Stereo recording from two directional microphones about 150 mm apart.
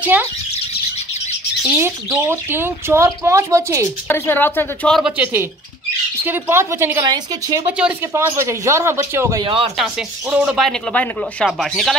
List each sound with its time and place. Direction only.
0.0 s speech: 10° right (ahead or behind)
1.8 s speech: 15° right (ahead or behind)
4.1 s speech: 15° left (ahead or behind)
4.9 s speech: 5° right (ahead or behind)
9.4 s speech: 35° right (ahead or behind)
10.3 s speech: 5° right (ahead or behind)
10.9 s speech: 5° left (ahead or behind)